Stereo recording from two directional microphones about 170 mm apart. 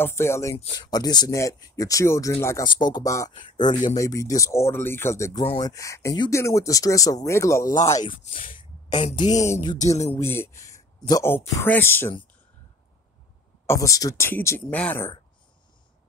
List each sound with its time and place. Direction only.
0.0 s speech: 15° left (ahead or behind)
8.3 s speech: 50° left (ahead or behind)
8.5 s a sound: 30° left (ahead or behind)
9.9 s speech: 40° left (ahead or behind)
10.2 s speech: 15° left (ahead or behind)
13.7 s speech: 20° left (ahead or behind)